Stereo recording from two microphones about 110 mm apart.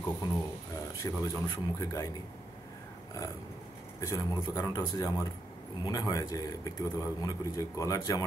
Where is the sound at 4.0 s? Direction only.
30° left (ahead or behind).